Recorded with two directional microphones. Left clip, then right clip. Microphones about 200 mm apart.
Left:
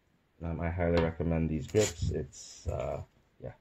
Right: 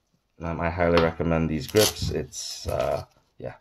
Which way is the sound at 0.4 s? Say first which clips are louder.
Right 9 dB; 10° right (ahead or behind).